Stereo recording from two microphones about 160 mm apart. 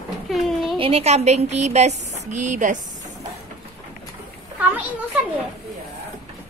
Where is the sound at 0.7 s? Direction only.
35° right (ahead or behind).